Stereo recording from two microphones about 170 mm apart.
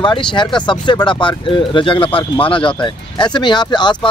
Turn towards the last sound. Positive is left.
turn(degrees=25)  # may be behind; listen again after turning